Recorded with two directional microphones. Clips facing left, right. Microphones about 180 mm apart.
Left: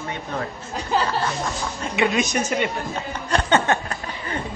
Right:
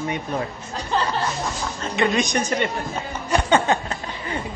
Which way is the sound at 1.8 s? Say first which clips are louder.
Even; 10° left (ahead or behind).